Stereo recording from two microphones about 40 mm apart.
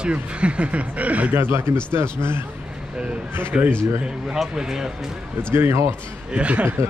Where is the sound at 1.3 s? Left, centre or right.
Right.